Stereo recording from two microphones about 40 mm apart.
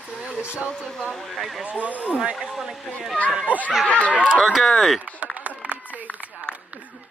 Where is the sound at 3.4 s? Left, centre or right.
Left.